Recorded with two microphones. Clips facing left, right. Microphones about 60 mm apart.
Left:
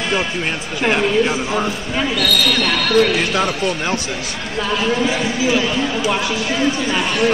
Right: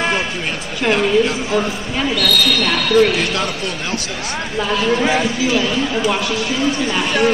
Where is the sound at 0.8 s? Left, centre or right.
Centre.